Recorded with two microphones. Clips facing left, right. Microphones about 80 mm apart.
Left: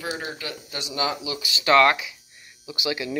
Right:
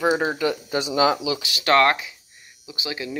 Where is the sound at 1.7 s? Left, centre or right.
Right.